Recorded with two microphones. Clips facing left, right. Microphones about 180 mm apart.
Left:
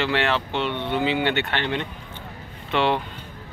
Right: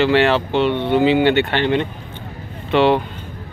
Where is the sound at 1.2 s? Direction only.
75° right (ahead or behind).